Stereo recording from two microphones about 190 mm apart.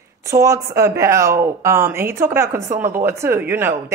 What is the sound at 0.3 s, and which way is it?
Speech, 15° right (ahead or behind).